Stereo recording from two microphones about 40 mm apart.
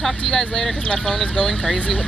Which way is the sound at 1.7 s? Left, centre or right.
Left.